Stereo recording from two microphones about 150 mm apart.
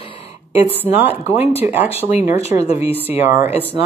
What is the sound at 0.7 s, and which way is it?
A woman's voice, 15° right (ahead or behind).